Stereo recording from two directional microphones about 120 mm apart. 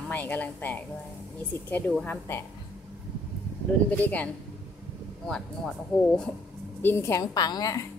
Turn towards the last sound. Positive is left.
turn(degrees=30)  # may be behind; listen again after turning